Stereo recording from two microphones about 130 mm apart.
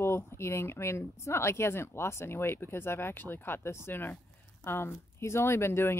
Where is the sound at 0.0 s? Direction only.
20° left (ahead or behind).